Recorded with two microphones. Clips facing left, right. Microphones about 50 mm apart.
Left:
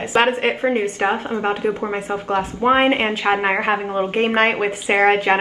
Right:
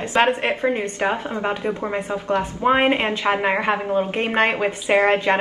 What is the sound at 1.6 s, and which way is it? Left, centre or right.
Speech, centre.